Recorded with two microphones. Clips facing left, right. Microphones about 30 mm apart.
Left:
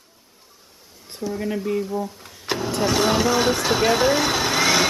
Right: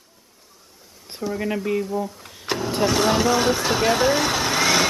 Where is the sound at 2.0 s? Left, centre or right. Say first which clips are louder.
Right 1 dB; centre.